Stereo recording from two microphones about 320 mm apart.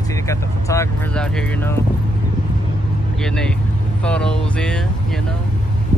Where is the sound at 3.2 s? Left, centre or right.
Centre.